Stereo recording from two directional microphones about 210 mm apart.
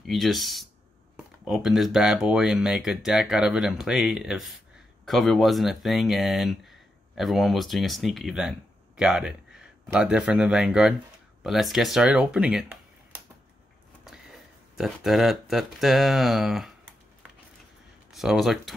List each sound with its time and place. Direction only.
0.0 s speech: centre (ahead or behind)
14.0 s speech: centre (ahead or behind)
18.1 s speech: centre (ahead or behind)